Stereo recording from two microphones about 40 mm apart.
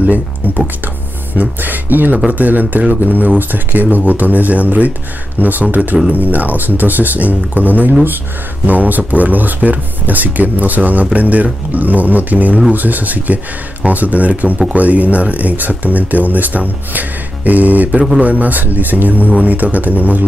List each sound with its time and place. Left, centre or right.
1.3 s speech: right